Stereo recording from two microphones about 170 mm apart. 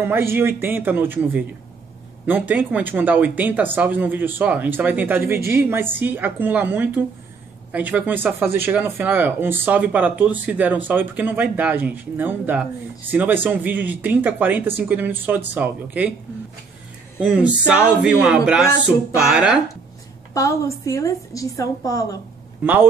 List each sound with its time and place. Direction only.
0.0 s speech: 15° right (ahead or behind)
17.2 s speech: 5° right (ahead or behind)
20.3 s a woman's voice: 20° left (ahead or behind)